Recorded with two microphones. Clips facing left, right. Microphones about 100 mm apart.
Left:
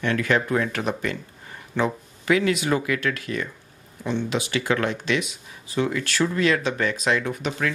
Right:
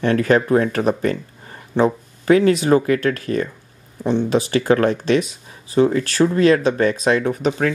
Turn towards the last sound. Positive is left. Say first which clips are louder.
# right 7 dB
turn(degrees=-40)  # may be behind; listen again after turning